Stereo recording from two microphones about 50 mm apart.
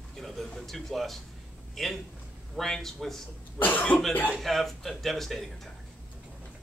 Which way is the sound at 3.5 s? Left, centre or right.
Left.